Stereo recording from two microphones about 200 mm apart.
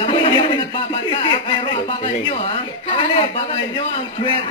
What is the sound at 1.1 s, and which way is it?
Speech, 25° left (ahead or behind).